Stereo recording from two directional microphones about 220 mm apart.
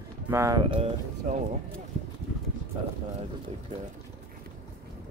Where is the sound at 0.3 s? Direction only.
15° right (ahead or behind).